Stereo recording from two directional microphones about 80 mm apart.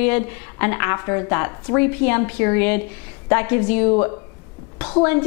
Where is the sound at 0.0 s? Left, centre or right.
Centre.